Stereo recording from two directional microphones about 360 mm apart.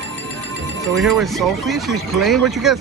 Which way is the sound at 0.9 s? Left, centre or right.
Centre.